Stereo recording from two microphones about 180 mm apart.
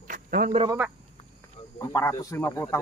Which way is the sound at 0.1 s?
50° right (ahead or behind).